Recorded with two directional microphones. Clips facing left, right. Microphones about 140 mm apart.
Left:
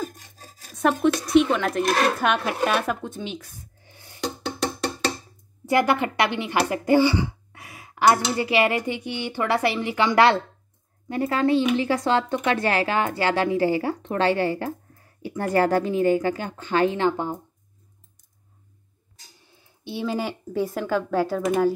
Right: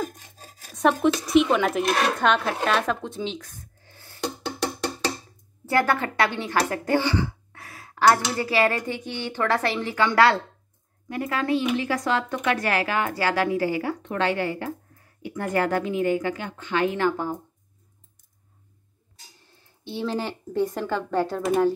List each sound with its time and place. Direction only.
0.7 s speech: centre (ahead or behind); by 4.2 s 15° left (ahead or behind)
5.7 s speech: 15° left (ahead or behind)
11.1 s a woman's voice: 30° left (ahead or behind)
16.9 s speech: 20° left (ahead or behind)
19.8 s speech: 10° left (ahead or behind)